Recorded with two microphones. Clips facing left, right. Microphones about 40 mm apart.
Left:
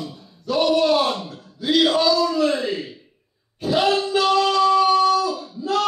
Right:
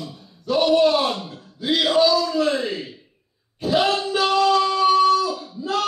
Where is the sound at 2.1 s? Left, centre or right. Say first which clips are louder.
Left 1 dB; centre.